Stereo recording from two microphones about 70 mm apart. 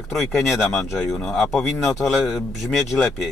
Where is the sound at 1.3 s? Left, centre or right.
Centre.